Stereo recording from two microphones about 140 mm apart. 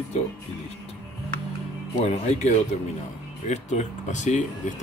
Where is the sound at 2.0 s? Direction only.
55° left (ahead or behind).